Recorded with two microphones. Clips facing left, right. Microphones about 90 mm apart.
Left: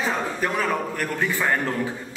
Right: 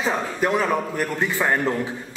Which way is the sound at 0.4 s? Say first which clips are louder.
Right 6 dB; 15° right (ahead or behind).